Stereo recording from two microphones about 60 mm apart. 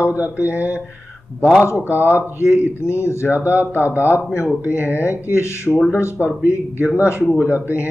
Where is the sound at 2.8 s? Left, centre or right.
Left.